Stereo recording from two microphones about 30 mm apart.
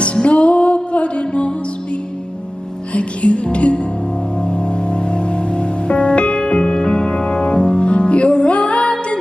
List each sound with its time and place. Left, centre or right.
0.0 s music: left
2.9 s music: left